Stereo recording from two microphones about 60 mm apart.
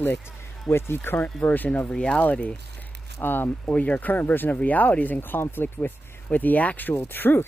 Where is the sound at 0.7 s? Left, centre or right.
Left.